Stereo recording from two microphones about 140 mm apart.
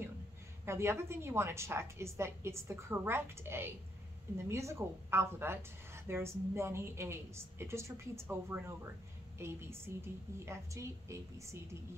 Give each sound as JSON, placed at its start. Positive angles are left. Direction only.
{"t": 0.7, "sound": "speech", "side_deg": -20}